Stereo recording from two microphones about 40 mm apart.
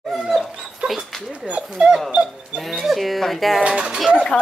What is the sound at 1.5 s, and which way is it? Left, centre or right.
Speech, right.